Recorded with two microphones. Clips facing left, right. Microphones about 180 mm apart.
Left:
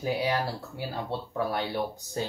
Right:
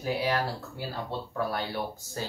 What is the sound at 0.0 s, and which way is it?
Speech, 15° left (ahead or behind).